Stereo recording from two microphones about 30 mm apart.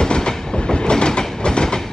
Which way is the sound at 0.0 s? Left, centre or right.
Left.